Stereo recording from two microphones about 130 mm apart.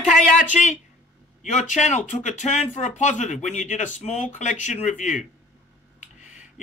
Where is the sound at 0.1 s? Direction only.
70° left (ahead or behind).